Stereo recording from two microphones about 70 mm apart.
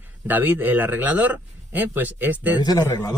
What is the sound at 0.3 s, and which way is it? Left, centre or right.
Speech, right.